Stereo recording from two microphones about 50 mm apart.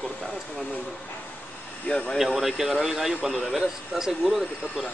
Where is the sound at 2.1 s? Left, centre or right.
Centre.